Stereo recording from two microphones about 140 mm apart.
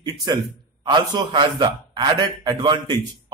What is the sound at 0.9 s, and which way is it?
A man's voice, 35° right (ahead or behind).